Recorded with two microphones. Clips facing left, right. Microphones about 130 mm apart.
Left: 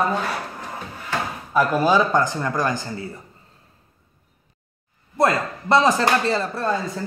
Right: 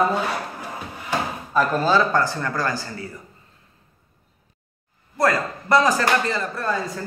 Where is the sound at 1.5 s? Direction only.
10° left (ahead or behind).